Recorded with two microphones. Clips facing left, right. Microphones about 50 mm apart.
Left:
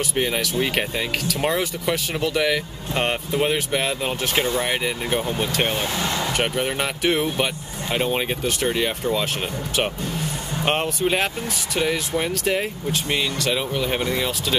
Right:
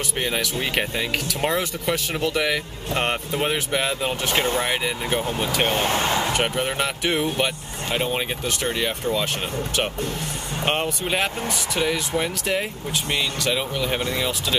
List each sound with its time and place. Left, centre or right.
0.2 s speech: centre
5.7 s speech: right
6.0 s a sound: centre
6.3 s speech: centre
10.6 s speech: centre